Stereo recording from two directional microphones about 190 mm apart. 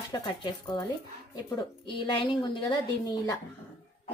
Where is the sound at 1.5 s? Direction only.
25° left (ahead or behind).